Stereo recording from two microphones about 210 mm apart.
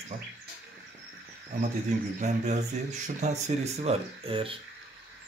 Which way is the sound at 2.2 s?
35° right (ahead or behind).